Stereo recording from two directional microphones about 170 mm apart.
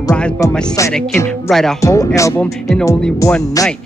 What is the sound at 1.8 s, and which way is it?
Speech, 20° left (ahead or behind).